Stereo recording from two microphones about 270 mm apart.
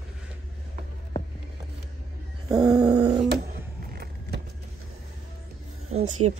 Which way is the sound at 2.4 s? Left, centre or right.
Centre.